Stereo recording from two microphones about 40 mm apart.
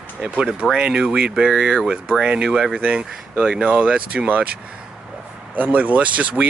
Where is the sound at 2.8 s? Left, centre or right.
Right.